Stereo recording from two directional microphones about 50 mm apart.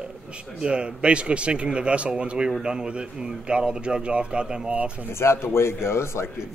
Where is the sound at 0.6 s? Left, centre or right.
Right.